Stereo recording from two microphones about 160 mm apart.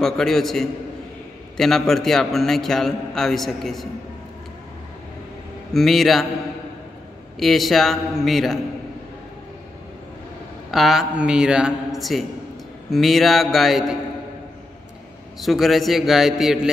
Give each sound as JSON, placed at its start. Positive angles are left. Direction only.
{"t": 0.0, "sound": "a man's voice", "side_deg": 0}
{"t": 5.7, "sound": "a man's voice", "side_deg": 0}
{"t": 7.3, "sound": "a man's voice", "side_deg": 0}
{"t": 10.7, "sound": "a man's voice", "side_deg": 0}
{"t": 15.4, "sound": "a man's voice", "side_deg": 0}